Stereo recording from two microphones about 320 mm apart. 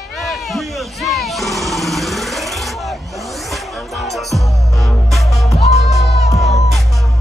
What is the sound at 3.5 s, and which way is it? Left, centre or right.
Music, centre.